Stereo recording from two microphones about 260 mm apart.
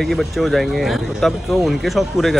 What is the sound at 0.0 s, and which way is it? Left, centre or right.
Speech, centre.